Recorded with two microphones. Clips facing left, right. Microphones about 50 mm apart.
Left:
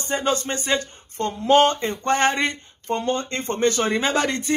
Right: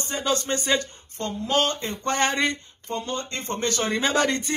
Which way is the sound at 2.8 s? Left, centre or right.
Left.